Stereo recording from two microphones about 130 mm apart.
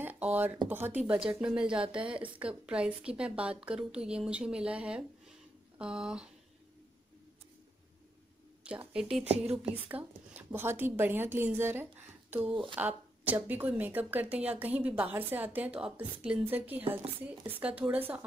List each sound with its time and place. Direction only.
0.0 s a sound: 15° right (ahead or behind)
0.7 s a woman's voice: 15° right (ahead or behind)
8.6 s a woman's voice: 10° right (ahead or behind)